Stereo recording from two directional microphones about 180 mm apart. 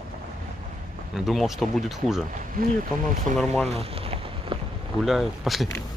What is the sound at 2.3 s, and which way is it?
Speech, 50° right (ahead or behind).